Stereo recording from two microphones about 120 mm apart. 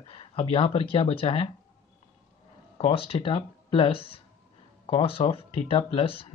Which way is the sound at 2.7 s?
50° left (ahead or behind).